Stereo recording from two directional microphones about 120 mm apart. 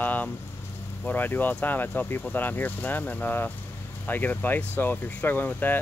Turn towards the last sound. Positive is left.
turn(degrees=15)  # may be behind; listen again after turning